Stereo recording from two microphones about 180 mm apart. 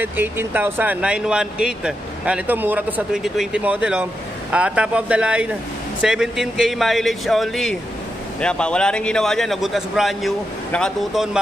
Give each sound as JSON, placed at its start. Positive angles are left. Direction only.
{"t": 0.0, "sound": "speech", "side_deg": -10}